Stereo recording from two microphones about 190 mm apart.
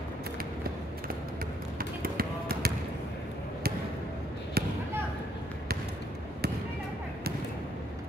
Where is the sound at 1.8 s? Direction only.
50° right (ahead or behind).